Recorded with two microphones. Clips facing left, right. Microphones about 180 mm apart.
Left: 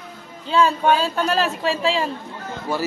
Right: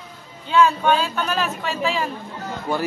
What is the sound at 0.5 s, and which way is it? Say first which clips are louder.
Speech: even; 35° left (ahead or behind).